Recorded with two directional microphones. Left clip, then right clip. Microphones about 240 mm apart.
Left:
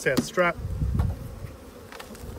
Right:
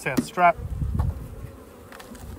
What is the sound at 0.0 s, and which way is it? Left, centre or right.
Speech, centre.